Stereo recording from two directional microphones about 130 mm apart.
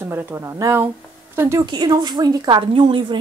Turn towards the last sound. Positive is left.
turn(degrees=-40)  # may be behind; listen again after turning